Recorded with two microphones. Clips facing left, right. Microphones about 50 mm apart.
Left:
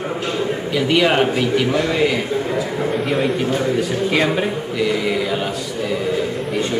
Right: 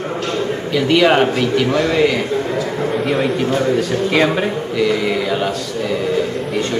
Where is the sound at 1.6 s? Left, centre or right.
Centre.